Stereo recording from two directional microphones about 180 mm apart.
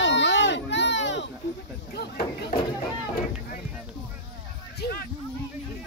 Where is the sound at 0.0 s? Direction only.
90° left.